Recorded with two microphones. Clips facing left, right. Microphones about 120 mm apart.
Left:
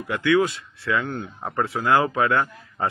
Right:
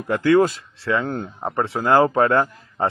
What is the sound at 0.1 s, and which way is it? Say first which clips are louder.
Speech: right 4 dB; 40° right (ahead or behind).